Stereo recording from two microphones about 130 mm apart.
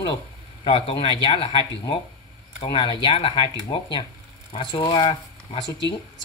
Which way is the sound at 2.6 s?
40° left (ahead or behind).